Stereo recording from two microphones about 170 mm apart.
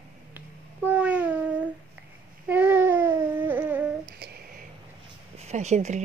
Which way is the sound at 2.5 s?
10° right (ahead or behind).